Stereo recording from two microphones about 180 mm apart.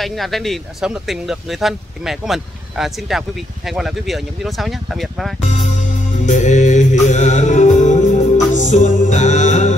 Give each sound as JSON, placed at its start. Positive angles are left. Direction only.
{"t": 0.0, "sound": "speech", "side_deg": 0}
{"t": 5.4, "sound": "music", "side_deg": 40}